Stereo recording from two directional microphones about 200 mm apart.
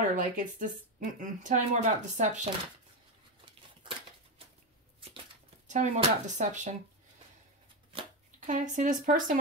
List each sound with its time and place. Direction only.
0.1 s speech: 40° right (ahead or behind)
5.7 s speech: 35° right (ahead or behind)
7.9 s shuffling cards: 40° right (ahead or behind)
9.0 s speech: 40° right (ahead or behind)